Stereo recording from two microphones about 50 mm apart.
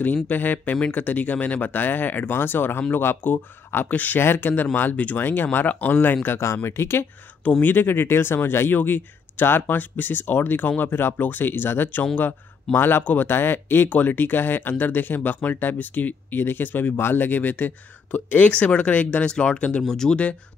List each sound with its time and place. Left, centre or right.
0.0 s speech: left
4.2 s speech: left
6.4 s speech: left
7.6 s speech: left
13.0 s speech: left
18.5 s speech: left
19.8 s speech: centre